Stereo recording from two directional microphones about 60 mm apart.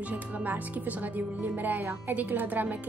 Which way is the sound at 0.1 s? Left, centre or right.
Right.